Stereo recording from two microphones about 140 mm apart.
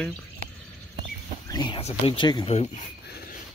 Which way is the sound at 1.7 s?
45° left (ahead or behind).